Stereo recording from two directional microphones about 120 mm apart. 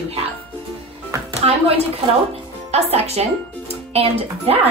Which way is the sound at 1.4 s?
55° right (ahead or behind).